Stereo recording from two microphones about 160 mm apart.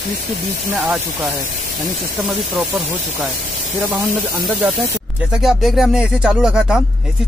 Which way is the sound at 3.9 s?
25° right (ahead or behind).